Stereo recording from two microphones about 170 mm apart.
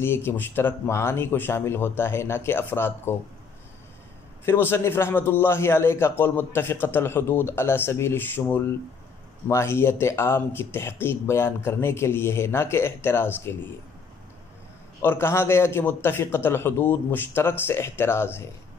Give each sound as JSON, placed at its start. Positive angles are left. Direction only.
{"t": 0.0, "sound": "a man's voice", "side_deg": 15}
{"t": 4.5, "sound": "a man's voice", "side_deg": 15}
{"t": 15.0, "sound": "a man's voice", "side_deg": 15}